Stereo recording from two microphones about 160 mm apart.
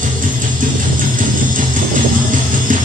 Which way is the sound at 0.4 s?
55° right (ahead or behind).